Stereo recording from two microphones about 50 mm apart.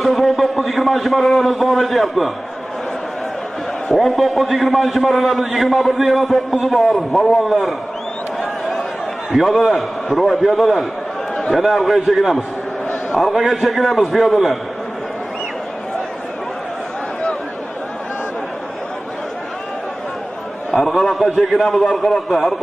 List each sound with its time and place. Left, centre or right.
0.0 s a man's voice: centre
3.9 s a man's voice: centre
8.4 s chatter: centre
9.3 s a man's voice: centre
13.4 s a man's voice: centre
20.7 s a man's voice: centre